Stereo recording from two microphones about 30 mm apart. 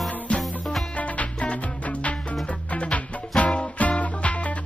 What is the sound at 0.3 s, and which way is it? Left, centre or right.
Music, left.